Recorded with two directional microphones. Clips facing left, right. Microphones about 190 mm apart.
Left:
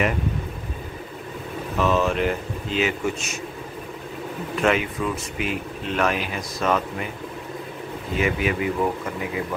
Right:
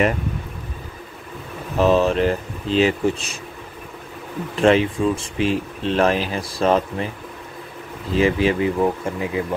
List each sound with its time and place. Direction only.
1.8 s speech: 35° right (ahead or behind)
4.6 s speech: 30° right (ahead or behind)
8.1 s speech: 30° right (ahead or behind)